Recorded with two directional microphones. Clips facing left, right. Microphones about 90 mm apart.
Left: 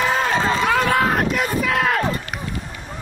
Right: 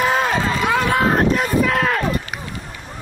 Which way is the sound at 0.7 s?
20° right (ahead or behind).